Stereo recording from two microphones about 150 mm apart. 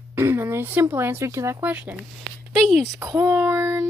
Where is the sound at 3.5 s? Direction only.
20° right (ahead or behind).